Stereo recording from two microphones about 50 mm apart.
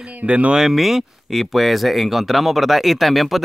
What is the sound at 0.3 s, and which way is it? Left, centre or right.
Speech, right.